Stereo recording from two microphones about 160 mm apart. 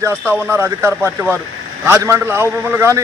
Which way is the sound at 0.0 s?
15° right (ahead or behind).